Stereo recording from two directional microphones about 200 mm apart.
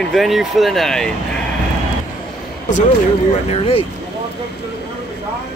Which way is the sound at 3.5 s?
30° left (ahead or behind).